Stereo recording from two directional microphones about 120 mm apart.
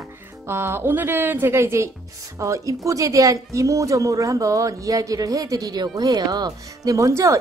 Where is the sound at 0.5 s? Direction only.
20° right (ahead or behind).